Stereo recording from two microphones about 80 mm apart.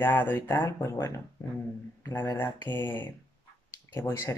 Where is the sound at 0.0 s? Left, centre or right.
Left.